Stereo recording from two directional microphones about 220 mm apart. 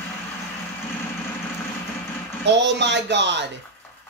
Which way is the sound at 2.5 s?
50° right (ahead or behind).